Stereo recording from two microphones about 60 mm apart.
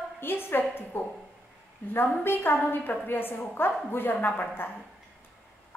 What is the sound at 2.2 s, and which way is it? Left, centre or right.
A woman's voice, left.